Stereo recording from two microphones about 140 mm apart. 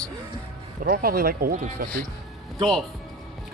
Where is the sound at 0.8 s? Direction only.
90° right.